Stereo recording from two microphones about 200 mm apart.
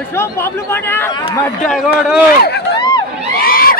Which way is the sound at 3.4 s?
45° left (ahead or behind).